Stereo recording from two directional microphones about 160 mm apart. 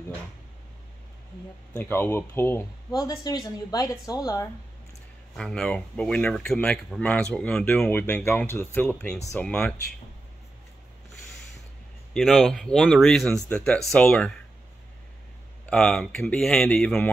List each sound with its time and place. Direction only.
1.8 s a woman's voice: 15° left (ahead or behind)
5.3 s speech: 5° left (ahead or behind)
12.1 s speech: centre (ahead or behind)
15.6 s speech: 5° left (ahead or behind)